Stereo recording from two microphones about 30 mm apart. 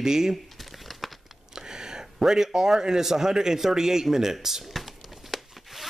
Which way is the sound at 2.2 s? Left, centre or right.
Centre.